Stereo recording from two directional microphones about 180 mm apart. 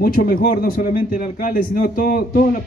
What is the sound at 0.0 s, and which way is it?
A man's voice, 55° left (ahead or behind).